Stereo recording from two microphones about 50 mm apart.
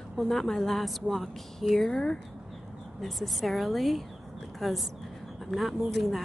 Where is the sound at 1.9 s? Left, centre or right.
Centre.